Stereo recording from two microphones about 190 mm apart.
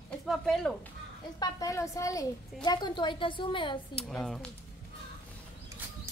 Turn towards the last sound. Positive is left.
turn(degrees=0)  # may be behind; listen again after turning